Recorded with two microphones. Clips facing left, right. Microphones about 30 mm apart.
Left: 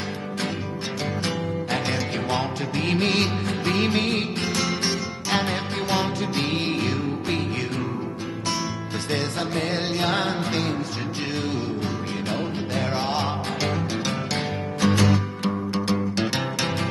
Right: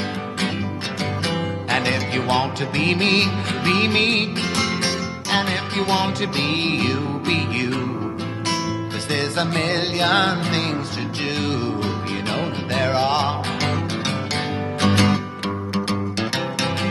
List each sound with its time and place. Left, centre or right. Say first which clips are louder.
1.7 s music: right 7 dB; right
3.4 s music: right 4 dB; right
9.1 s music: right 4 dB; right